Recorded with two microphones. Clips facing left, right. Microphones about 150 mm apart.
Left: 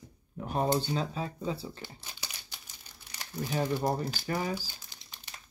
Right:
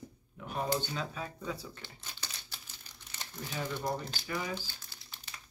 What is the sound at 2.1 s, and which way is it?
Crumpling, 15° left (ahead or behind).